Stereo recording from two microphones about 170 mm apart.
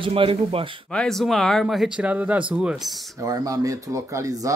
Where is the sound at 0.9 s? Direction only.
5° left (ahead or behind).